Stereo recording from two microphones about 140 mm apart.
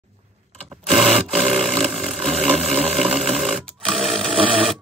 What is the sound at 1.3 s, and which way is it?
Roar, centre (ahead or behind).